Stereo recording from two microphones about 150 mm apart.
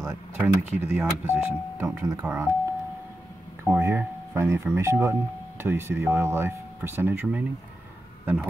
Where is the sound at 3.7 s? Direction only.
10° right (ahead or behind).